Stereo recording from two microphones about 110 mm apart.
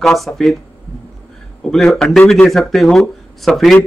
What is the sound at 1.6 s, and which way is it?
Speech, 5° left (ahead or behind).